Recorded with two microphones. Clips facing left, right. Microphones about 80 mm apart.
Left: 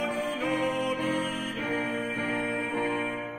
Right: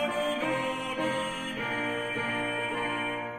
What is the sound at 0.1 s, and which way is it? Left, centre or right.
Music, centre.